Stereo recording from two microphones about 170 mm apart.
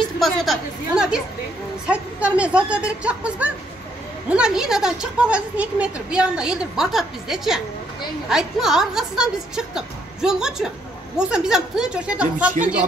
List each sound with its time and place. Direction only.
0.2 s a woman's voice: centre (ahead or behind)